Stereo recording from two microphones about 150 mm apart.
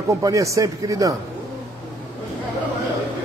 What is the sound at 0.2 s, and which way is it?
Speech, 20° right (ahead or behind).